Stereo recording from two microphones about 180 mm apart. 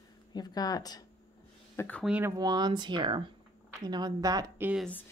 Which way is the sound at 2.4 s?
25° right (ahead or behind).